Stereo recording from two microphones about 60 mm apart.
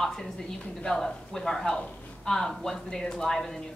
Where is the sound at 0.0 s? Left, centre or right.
Centre.